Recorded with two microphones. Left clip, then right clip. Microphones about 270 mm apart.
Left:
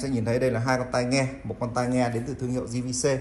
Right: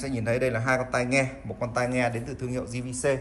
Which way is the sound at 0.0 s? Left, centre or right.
Centre.